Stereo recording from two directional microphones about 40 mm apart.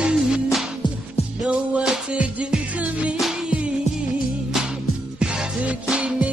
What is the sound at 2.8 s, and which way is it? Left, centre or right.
Music, right.